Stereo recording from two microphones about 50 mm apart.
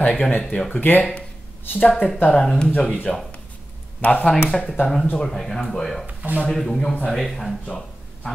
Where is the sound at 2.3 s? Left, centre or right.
Centre.